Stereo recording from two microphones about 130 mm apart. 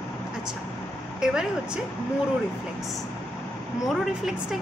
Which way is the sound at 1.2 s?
5° right (ahead or behind).